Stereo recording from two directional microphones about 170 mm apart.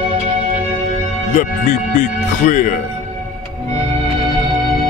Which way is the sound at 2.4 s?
50° left (ahead or behind).